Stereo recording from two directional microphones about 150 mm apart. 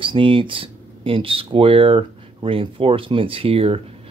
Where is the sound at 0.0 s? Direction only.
35° right (ahead or behind).